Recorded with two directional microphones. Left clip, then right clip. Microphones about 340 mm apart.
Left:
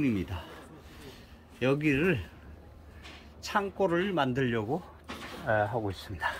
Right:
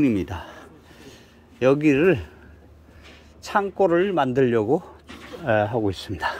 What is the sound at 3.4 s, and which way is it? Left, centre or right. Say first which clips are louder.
Speech: right 8 dB; centre.